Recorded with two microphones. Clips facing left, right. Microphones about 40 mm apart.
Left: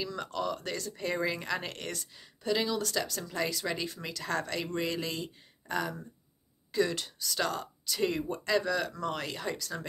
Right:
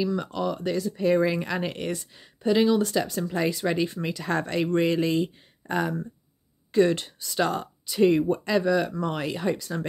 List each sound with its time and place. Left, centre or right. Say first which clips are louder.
0.0 s speech: right 7 dB; centre